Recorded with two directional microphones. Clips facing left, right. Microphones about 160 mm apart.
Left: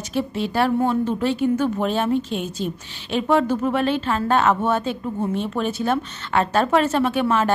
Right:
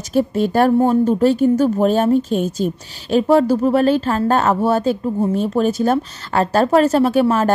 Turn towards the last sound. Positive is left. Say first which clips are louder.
# right 5 dB
turn(degrees=-40)  # may be behind; listen again after turning